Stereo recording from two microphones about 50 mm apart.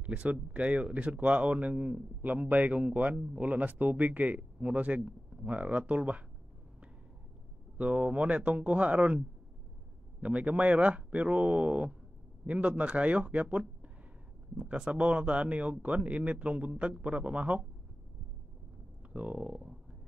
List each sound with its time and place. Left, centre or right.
0.0 s speech: right
7.7 s speech: right
10.2 s speech: right
19.1 s speech: right